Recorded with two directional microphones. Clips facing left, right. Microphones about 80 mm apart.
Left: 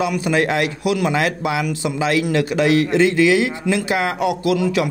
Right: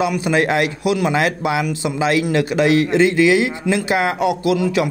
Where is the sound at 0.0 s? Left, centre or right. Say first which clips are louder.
Right 1 dB; right.